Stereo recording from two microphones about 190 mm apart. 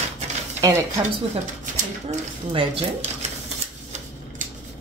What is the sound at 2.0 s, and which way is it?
Speech, 30° right (ahead or behind).